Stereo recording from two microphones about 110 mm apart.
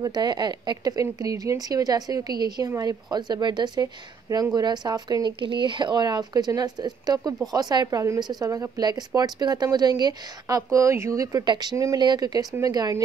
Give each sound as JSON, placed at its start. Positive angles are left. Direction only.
{"t": 0.0, "sound": "speech", "side_deg": -40}
{"t": 11.7, "sound": "speech", "side_deg": -30}